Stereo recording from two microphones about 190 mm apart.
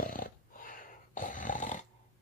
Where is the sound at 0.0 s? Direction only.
45° left (ahead or behind).